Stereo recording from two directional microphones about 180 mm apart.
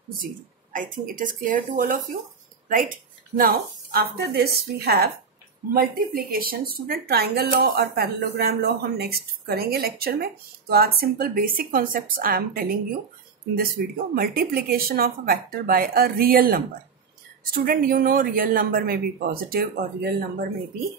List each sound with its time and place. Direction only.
0.7 s speech: 50° right (ahead or behind)
13.8 s speech: 55° right (ahead or behind)
17.6 s speech: 50° right (ahead or behind)